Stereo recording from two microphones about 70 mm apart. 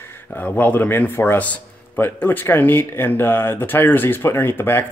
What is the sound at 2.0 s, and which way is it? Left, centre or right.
Speech, left.